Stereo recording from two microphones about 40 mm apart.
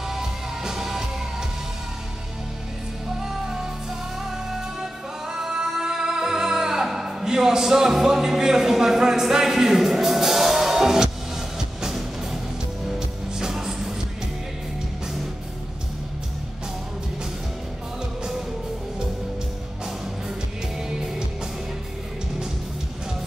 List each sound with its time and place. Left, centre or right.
0.1 s music: centre
3.2 s music: centre